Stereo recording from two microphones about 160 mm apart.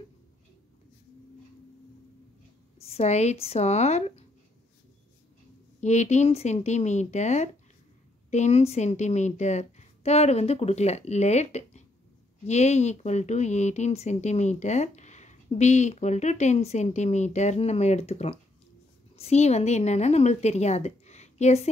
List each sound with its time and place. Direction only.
2.8 s speech: 40° left (ahead or behind)
5.8 s a woman's voice: 45° left (ahead or behind)